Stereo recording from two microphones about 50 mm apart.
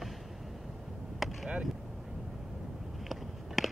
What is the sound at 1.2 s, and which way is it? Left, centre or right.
Vehicle, centre.